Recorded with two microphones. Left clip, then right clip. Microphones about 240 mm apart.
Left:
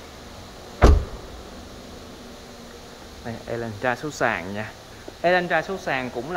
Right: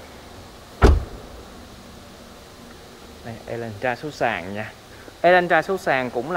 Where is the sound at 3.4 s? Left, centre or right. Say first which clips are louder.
Even; centre.